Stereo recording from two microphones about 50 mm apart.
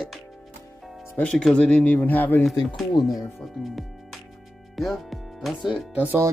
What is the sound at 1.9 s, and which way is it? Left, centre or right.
Speech, left.